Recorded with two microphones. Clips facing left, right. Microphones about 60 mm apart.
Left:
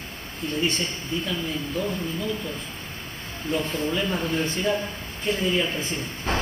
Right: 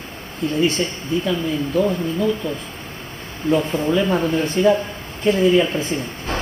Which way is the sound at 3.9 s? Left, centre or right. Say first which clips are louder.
Right 10 dB; right.